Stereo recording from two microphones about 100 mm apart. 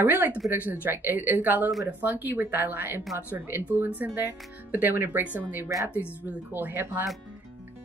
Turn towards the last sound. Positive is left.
turn(degrees=-20)  # may be behind; listen again after turning